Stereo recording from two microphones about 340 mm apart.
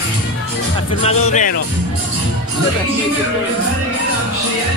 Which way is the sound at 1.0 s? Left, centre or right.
Centre.